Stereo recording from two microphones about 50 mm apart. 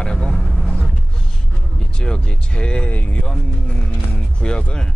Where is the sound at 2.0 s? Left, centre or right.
Centre.